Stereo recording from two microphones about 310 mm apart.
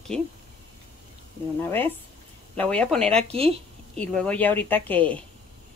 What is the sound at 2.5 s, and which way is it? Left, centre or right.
Speech, centre.